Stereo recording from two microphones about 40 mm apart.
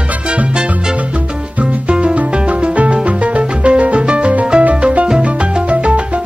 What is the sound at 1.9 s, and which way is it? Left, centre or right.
Music, right.